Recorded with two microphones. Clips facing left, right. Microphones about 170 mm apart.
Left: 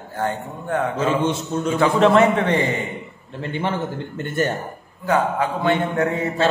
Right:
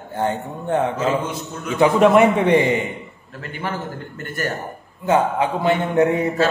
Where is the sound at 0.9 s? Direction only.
30° left (ahead or behind).